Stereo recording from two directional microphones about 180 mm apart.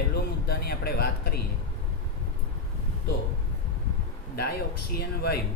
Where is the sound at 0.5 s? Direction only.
60° left (ahead or behind).